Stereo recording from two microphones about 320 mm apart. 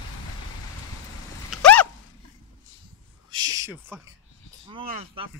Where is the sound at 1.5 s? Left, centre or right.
Centre.